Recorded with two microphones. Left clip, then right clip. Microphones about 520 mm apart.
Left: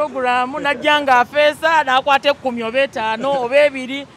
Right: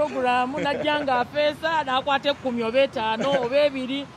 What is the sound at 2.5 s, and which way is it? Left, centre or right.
Speech, centre.